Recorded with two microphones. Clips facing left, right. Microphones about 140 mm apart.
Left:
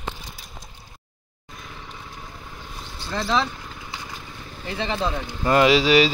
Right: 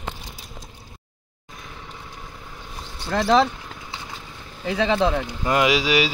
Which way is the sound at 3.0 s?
65° right (ahead or behind).